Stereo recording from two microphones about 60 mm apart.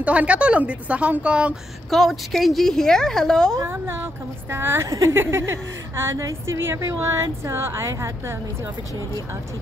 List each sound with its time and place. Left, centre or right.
0.0 s a woman's voice: right
1.9 s a woman's voice: centre
3.6 s a woman's voice: right
4.8 s speech: right
5.1 s a woman's voice: right